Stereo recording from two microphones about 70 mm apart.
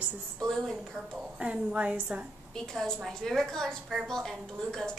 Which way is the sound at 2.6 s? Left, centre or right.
Centre.